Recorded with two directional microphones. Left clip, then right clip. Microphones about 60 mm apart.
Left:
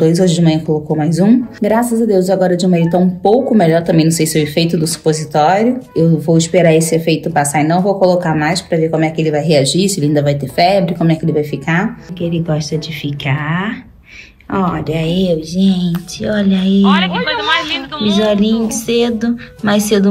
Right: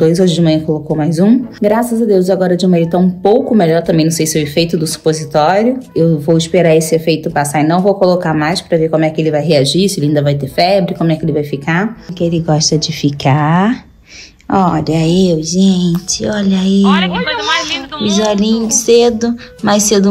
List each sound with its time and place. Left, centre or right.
0.0 s speech: right
4.3 s speech: centre
4.8 s speech: right
7.5 s speech: right
10.5 s speech: centre
11.1 s speech: right
12.7 s speech: right
14.5 s speech: right
16.8 s speech: centre
18.0 s speech: right